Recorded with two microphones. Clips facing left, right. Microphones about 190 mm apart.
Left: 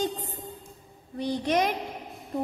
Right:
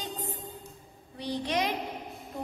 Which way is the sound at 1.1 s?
50° left (ahead or behind).